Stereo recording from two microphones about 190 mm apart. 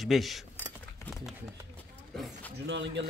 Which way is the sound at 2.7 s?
70° right (ahead or behind).